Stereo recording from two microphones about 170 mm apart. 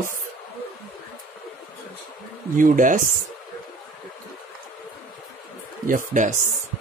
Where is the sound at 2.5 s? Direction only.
50° right (ahead or behind).